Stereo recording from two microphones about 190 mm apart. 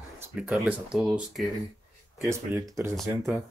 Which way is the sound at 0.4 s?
5° right (ahead or behind).